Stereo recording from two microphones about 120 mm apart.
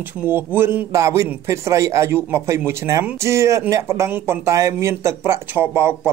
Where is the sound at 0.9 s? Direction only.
25° right (ahead or behind).